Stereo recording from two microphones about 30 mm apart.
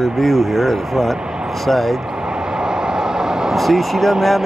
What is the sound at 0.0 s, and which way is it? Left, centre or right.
Speech, centre.